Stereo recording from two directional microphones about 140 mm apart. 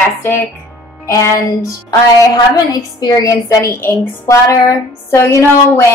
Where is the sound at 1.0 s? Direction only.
20° left (ahead or behind).